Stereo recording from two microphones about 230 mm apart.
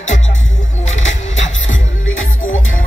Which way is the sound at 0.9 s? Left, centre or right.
Left.